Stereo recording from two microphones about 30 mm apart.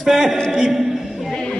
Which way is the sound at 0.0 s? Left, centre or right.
Centre.